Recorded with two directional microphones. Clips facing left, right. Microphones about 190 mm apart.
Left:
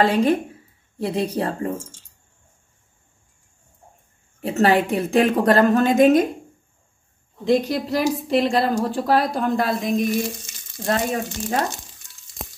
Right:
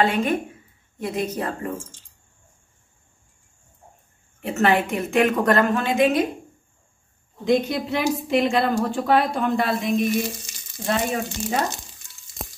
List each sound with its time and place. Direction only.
0.0 s a woman's voice: 35° left (ahead or behind)
4.4 s a woman's voice: 35° left (ahead or behind)
7.3 s speech: centre (ahead or behind)